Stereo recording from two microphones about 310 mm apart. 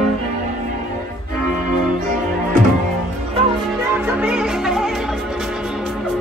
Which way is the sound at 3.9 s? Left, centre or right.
Centre.